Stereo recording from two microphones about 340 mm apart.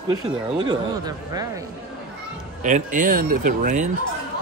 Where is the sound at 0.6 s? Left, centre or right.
Centre.